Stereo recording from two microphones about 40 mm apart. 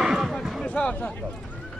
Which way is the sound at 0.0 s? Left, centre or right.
Centre.